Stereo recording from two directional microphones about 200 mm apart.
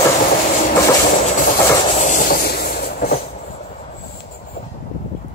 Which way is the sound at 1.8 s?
35° left (ahead or behind).